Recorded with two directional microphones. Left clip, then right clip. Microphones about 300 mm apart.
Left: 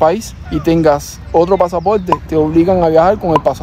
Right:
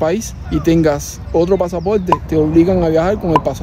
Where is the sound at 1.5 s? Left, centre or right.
Centre.